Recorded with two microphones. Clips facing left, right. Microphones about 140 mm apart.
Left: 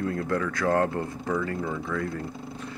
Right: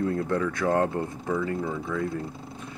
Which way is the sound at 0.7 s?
15° right (ahead or behind).